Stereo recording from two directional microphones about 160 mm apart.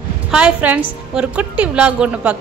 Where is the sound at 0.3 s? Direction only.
5° right (ahead or behind).